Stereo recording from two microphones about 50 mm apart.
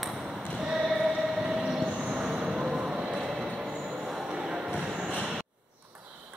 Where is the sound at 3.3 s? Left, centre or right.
Centre.